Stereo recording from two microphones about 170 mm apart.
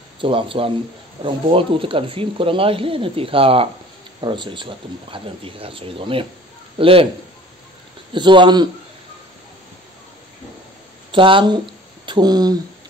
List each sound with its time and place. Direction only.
0.2 s speech: 30° right (ahead or behind)
8.1 s speech: 30° right (ahead or behind)
11.1 s speech: 30° right (ahead or behind)